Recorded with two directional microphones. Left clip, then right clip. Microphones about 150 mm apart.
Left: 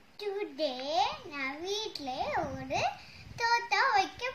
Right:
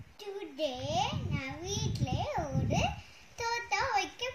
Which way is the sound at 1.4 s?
15° right (ahead or behind).